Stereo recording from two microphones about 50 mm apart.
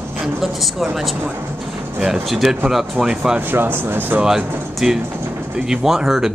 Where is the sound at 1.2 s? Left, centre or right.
Right.